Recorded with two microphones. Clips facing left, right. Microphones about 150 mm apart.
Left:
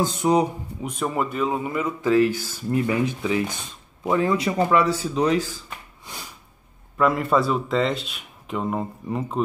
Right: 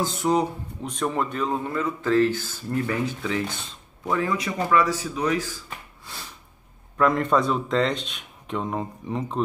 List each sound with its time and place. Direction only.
0.0 s speech: 20° left (ahead or behind)
6.1 s a sound: 15° left (ahead or behind)
7.0 s speech: 5° left (ahead or behind)